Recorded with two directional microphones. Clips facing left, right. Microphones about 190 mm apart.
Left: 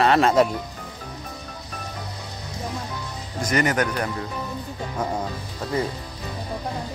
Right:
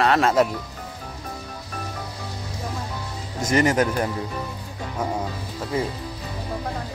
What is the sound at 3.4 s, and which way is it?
Speech, 25° right (ahead or behind).